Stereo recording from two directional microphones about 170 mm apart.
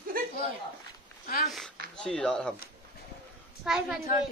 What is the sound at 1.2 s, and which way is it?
Speech, 60° left (ahead or behind).